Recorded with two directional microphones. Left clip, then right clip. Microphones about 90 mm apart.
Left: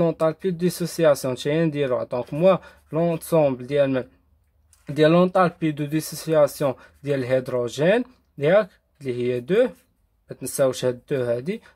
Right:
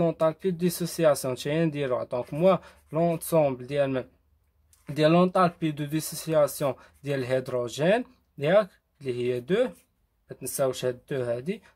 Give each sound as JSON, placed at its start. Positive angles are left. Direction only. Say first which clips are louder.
{"t": 0.0, "sound": "speech", "louder": "left 3 dB", "side_deg": 25}
{"t": 10.2, "sound": "speech", "louder": "left 6 dB", "side_deg": 35}